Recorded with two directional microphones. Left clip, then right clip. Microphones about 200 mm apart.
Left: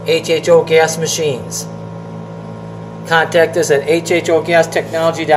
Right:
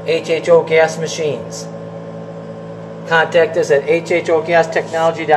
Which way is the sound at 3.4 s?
15° left (ahead or behind).